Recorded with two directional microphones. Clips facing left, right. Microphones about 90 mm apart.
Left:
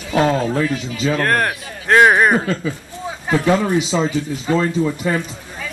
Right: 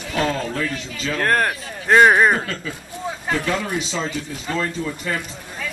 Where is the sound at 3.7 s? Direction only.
10° left (ahead or behind).